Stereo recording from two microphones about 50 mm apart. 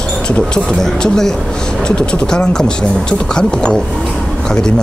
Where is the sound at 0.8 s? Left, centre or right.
Centre.